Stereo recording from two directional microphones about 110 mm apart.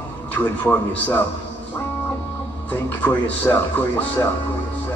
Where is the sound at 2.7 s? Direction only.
15° left (ahead or behind).